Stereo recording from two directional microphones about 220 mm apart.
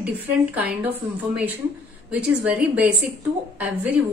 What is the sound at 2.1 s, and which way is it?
A woman's voice, 5° right (ahead or behind).